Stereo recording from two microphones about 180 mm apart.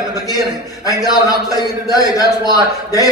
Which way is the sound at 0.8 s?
20° left (ahead or behind).